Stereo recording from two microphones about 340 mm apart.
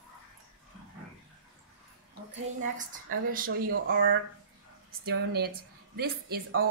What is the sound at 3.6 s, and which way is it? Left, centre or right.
Speech, right.